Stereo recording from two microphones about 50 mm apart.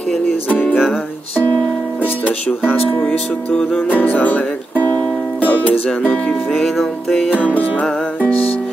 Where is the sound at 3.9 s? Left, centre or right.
Left.